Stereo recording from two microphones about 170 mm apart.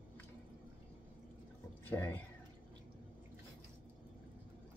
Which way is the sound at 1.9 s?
15° left (ahead or behind).